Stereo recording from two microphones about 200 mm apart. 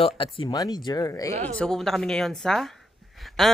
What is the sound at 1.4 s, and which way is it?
Speech, 5° left (ahead or behind).